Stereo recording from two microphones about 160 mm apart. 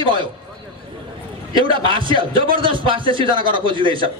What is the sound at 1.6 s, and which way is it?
A man's voice, 30° right (ahead or behind).